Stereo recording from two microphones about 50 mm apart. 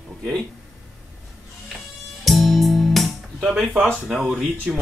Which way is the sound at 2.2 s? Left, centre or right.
Centre.